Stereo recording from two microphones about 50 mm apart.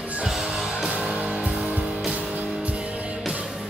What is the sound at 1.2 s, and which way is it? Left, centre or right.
Music, right.